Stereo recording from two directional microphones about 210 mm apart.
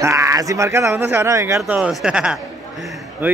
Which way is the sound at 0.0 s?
15° right (ahead or behind).